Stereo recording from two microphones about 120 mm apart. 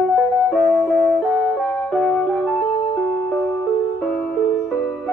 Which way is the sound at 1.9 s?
5° left (ahead or behind).